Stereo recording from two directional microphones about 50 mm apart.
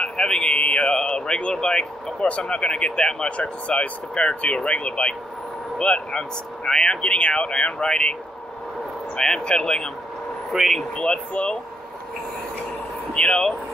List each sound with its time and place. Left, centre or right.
0.0 s a sound: centre
0.6 s speech: left
9.4 s speech: centre
10.5 s speech: centre
13.1 s speech: centre